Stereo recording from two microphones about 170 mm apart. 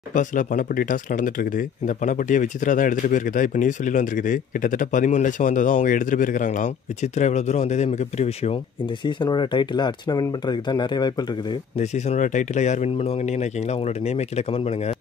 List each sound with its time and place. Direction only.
0.1 s speech: 50° left (ahead or behind)
9.0 s speech: 25° left (ahead or behind)
11.8 s speech: 40° left (ahead or behind)